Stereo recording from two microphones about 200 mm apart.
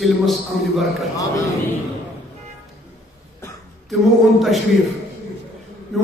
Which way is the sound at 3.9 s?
Centre (ahead or behind).